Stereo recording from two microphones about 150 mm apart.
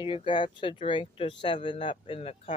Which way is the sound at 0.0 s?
35° left (ahead or behind).